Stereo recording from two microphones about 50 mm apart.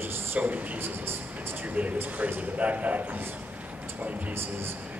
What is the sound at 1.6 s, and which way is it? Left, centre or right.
Speech, right.